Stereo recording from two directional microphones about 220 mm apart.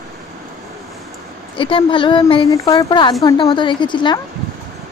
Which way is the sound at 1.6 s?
25° left (ahead or behind).